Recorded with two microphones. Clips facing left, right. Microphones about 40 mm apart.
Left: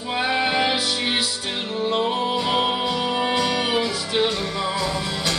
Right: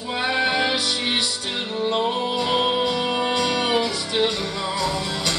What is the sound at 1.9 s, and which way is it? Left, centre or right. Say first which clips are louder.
Music: left 1 dB; centre.